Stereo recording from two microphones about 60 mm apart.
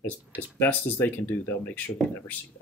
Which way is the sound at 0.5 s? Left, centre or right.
Left.